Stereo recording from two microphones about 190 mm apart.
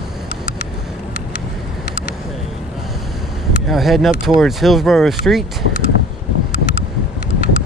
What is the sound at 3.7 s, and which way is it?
Speech, centre (ahead or behind).